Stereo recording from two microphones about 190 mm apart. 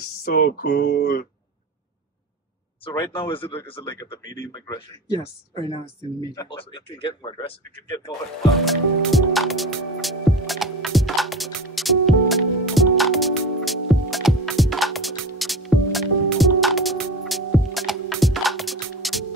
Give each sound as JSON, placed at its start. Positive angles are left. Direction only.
{"t": 0.2, "sound": "speech", "side_deg": 50}
{"t": 3.2, "sound": "speech", "side_deg": 25}
{"t": 8.5, "sound": "music", "side_deg": 0}